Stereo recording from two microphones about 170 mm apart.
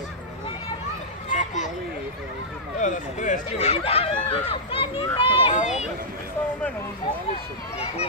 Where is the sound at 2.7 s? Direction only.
50° left (ahead or behind).